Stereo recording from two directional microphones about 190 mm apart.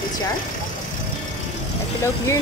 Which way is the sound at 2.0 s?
15° left (ahead or behind).